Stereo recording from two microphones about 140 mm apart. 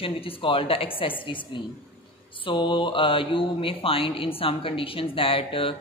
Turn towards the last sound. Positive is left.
turn(degrees=40)  # may be behind; listen again after turning